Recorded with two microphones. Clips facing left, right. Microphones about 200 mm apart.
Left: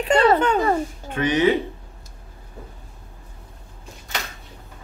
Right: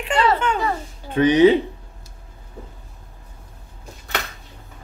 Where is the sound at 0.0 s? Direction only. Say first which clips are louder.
Left 3 dB; 40° left (ahead or behind).